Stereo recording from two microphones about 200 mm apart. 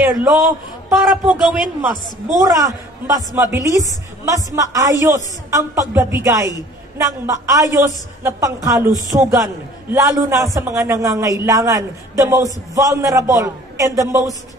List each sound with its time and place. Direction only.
0.9 s a man's voice: centre (ahead or behind)
2.3 s a man's voice: 15° right (ahead or behind)